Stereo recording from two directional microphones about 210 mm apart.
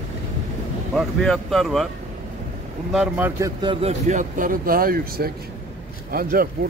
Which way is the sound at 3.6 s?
25° right (ahead or behind).